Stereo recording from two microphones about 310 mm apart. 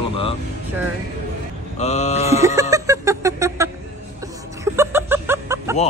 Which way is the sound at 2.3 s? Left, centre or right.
Centre.